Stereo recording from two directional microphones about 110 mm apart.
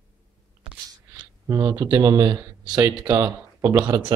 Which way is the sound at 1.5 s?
35° right (ahead or behind).